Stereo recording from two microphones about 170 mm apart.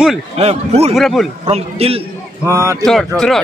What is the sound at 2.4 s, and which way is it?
Speech, 20° right (ahead or behind).